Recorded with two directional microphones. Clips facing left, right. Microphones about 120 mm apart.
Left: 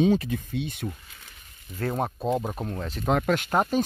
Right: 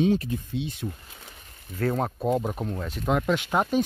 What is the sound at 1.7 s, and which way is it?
Speech, 20° left (ahead or behind).